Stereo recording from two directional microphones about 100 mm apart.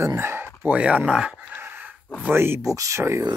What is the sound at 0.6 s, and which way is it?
Speech, 10° right (ahead or behind).